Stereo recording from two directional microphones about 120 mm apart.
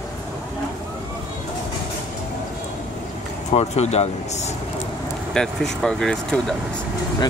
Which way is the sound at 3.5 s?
65° left (ahead or behind).